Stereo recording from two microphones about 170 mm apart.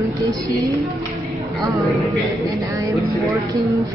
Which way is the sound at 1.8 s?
Centre (ahead or behind).